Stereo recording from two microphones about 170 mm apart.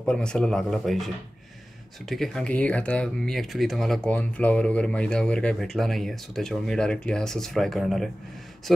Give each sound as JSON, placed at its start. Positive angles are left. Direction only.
{"t": 0.0, "sound": "speech", "side_deg": 5}